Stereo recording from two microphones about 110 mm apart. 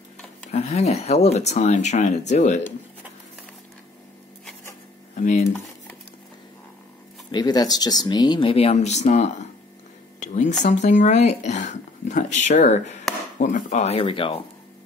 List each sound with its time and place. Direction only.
0.5 s speech: 90° left
5.1 s speech: 90° left
7.2 s speech: 40° left (ahead or behind)
8.5 s speech: 65° left (ahead or behind)